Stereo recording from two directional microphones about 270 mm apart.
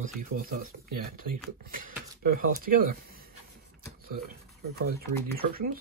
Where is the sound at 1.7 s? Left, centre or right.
Right.